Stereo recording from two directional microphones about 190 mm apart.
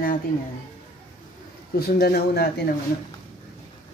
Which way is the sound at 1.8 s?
55° left (ahead or behind).